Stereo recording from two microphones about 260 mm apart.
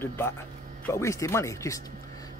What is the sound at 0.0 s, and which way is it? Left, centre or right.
Speech, centre.